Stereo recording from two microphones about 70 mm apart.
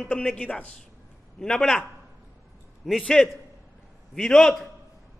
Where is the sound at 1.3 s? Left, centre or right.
Centre.